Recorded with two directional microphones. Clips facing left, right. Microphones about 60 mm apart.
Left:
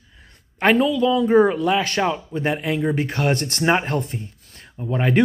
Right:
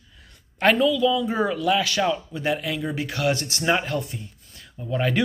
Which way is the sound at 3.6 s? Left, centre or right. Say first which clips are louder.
Left 3 dB; left.